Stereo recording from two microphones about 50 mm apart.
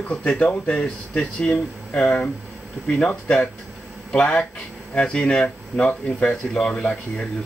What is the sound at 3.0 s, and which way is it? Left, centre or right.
Speech, centre.